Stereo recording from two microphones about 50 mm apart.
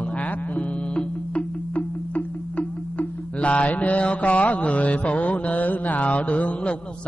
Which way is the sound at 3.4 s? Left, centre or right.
Left.